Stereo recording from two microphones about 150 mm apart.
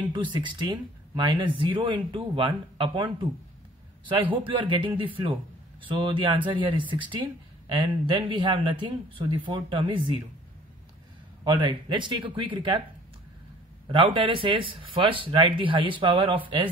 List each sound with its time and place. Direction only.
0.1 s a man's voice: 30° right (ahead or behind)
11.4 s a man's voice: 30° right (ahead or behind)
13.8 s a man's voice: 35° right (ahead or behind)